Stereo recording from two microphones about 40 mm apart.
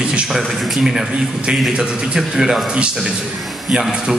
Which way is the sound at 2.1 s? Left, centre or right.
Centre.